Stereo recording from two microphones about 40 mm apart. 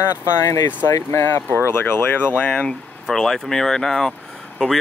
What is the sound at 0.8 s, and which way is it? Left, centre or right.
Speech, left.